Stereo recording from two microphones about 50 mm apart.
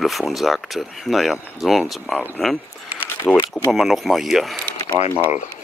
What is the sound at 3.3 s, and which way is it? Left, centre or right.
Speech, left.